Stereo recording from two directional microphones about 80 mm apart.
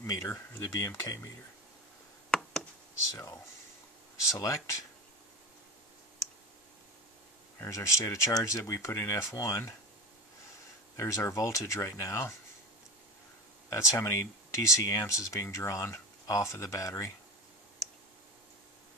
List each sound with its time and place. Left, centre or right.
0.0 s speech: left
2.3 s a sound: centre
4.3 s speech: left
7.6 s speech: left
11.0 s speech: left
13.7 s speech: left